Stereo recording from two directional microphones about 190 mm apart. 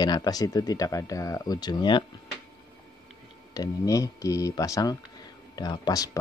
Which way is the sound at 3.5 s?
20° left (ahead or behind).